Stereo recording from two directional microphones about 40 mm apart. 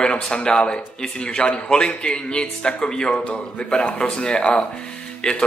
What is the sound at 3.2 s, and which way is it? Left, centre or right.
Speech, left.